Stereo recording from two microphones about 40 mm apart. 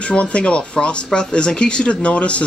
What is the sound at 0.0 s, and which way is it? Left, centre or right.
Speech, left.